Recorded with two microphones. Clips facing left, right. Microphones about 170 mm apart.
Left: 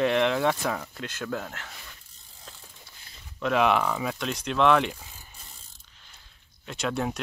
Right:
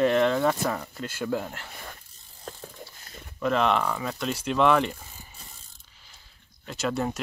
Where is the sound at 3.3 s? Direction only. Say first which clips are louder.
Left 1 dB; centre (ahead or behind).